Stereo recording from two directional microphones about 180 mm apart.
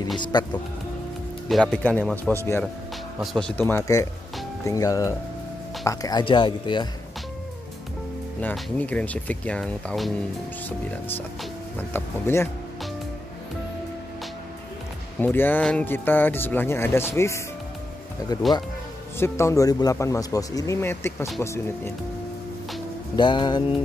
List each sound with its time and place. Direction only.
0.2 s speech: 25° left (ahead or behind)
1.5 s a man's voice: 5° left (ahead or behind); by 6.9 s 25° left (ahead or behind)
8.4 s speech: 10° left (ahead or behind)
11.9 s speech: 15° left (ahead or behind)
15.1 s speech: 10° left (ahead or behind)
23.1 s speech: 25° left (ahead or behind)